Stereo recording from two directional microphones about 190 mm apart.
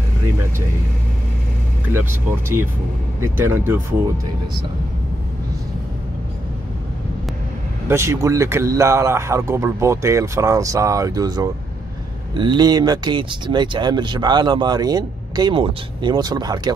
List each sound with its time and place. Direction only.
1.9 s speech: 10° right (ahead or behind)
7.9 s speech: 15° right (ahead or behind)